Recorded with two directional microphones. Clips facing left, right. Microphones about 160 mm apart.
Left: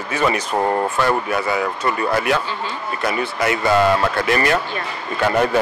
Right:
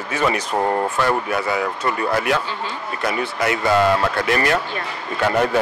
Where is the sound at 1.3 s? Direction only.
15° left (ahead or behind).